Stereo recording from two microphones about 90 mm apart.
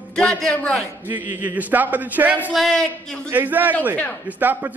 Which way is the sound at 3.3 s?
20° right (ahead or behind).